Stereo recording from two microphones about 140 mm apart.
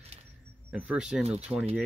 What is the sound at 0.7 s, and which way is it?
Speech, 5° right (ahead or behind).